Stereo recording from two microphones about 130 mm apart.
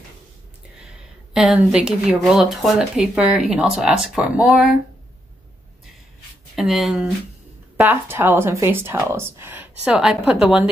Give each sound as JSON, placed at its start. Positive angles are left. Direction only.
{"t": 1.3, "sound": "speech", "side_deg": -5}
{"t": 6.5, "sound": "speech", "side_deg": 0}
{"t": 7.7, "sound": "speech", "side_deg": -15}